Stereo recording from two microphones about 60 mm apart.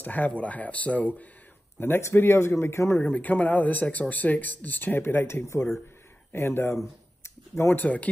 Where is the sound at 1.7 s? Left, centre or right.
Left.